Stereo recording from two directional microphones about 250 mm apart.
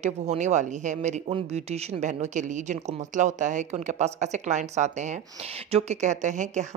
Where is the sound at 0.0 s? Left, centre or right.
Right.